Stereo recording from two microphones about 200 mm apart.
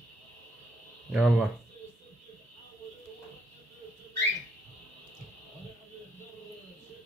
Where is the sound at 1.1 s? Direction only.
Centre (ahead or behind).